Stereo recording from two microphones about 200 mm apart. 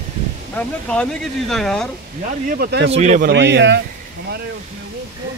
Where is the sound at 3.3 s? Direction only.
60° right (ahead or behind).